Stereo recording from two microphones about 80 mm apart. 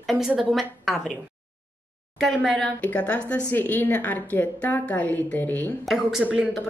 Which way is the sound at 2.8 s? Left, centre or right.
Centre.